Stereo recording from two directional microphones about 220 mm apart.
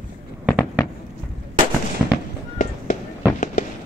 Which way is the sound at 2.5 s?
35° left (ahead or behind).